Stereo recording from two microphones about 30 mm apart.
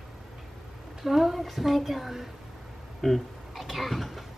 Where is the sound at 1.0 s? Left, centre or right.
Centre.